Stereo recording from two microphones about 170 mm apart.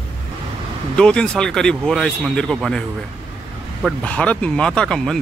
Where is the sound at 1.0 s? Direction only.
5° left (ahead or behind).